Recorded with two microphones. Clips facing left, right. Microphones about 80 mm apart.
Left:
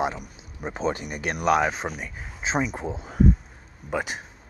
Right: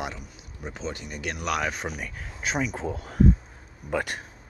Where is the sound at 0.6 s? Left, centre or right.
Left.